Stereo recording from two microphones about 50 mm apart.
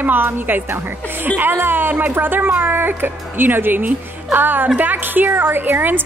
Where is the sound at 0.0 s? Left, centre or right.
Right.